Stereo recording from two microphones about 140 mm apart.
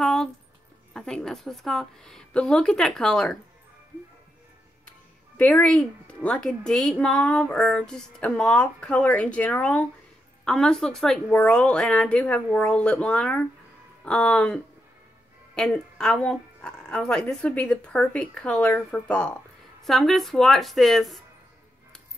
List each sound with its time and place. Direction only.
0.0 s music: 5° left (ahead or behind)
0.9 s speech: 5° left (ahead or behind)
5.4 s a woman's voice: 10° left (ahead or behind)